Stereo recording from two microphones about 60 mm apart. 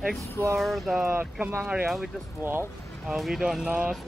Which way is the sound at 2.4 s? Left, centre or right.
Right.